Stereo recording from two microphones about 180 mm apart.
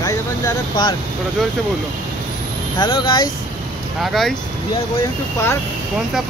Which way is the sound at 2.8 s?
25° left (ahead or behind).